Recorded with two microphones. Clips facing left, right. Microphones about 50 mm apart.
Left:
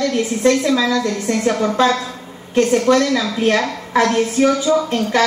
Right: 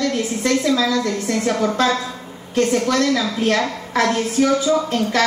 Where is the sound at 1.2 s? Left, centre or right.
Centre.